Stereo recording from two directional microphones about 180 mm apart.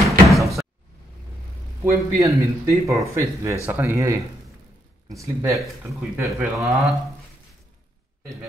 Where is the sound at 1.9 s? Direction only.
15° right (ahead or behind).